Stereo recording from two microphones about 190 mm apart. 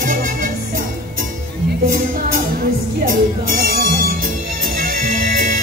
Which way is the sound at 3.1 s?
45° right (ahead or behind).